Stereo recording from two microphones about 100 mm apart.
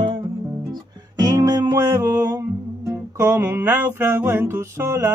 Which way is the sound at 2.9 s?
25° right (ahead or behind).